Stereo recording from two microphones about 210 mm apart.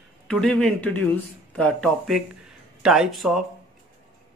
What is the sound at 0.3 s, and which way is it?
Speech, 5° left (ahead or behind).